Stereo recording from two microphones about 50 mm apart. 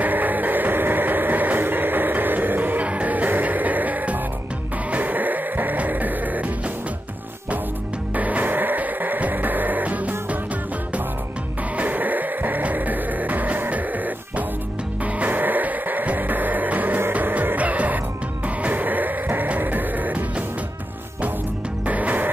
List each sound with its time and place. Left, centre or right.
0.0 s train: right
4.9 s music: right
8.2 s music: right
11.7 s music: right
21.8 s music: right